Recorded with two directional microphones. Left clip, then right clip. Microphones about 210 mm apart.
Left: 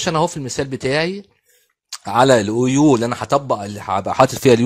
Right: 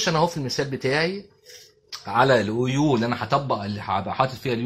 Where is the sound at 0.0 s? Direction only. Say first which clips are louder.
Left 3 dB; 40° left (ahead or behind).